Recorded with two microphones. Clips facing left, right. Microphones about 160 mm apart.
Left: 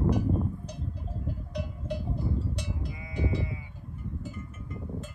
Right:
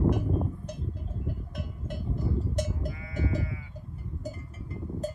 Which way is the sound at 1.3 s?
50° right (ahead or behind).